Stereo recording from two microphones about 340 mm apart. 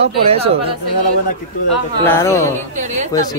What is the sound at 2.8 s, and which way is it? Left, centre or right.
Speech, right.